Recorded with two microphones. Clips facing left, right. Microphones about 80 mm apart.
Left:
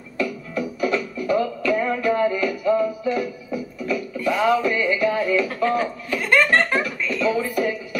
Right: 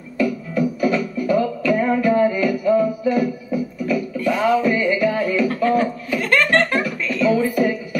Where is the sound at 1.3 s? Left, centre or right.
Centre.